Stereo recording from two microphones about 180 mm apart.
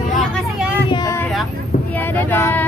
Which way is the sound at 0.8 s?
25° left (ahead or behind).